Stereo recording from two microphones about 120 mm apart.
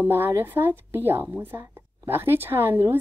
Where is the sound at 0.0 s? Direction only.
20° right (ahead or behind).